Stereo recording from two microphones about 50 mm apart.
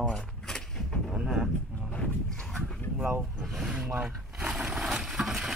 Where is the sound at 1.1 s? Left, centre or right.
Centre.